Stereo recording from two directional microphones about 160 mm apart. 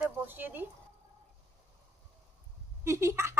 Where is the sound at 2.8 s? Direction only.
15° right (ahead or behind).